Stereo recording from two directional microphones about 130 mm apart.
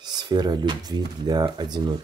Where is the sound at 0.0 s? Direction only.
35° right (ahead or behind).